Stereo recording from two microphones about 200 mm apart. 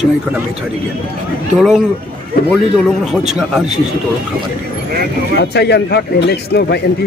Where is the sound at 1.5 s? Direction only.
Centre (ahead or behind).